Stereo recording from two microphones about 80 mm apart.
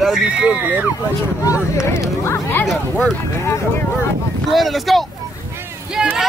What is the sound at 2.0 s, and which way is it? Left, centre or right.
Speech, left.